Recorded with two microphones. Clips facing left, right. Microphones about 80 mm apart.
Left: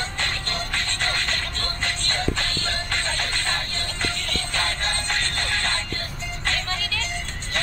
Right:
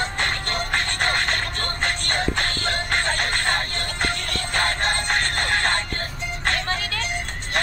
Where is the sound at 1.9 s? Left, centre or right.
Right.